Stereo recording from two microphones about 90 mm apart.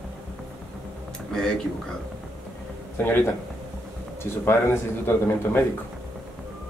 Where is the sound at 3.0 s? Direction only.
25° left (ahead or behind).